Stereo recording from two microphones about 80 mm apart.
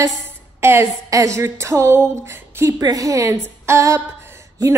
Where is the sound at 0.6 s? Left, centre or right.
Right.